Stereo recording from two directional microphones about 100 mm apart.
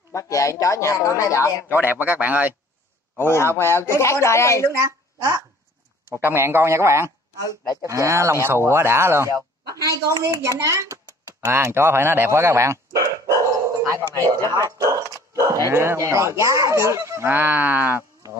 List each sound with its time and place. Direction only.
0.1 s speech: 30° left (ahead or behind)
1.7 s speech: 20° right (ahead or behind)
3.2 s a man's voice: 25° left (ahead or behind)
4.7 s a woman's voice: 30° right (ahead or behind)